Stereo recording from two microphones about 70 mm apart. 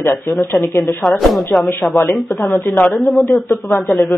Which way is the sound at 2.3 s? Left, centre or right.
Left.